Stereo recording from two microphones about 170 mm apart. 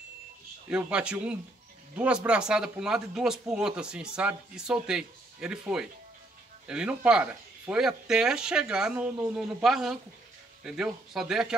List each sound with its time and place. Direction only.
0.7 s a man's voice: 5° right (ahead or behind)